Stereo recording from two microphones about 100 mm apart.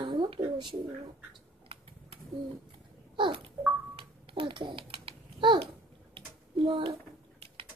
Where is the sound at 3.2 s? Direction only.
60° right (ahead or behind).